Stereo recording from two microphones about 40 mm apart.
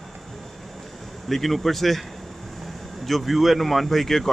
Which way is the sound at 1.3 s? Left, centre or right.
Centre.